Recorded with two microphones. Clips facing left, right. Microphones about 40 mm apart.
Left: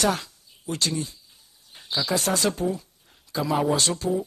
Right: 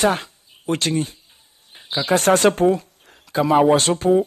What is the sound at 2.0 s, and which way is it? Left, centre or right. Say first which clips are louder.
Speech: right 9 dB; right.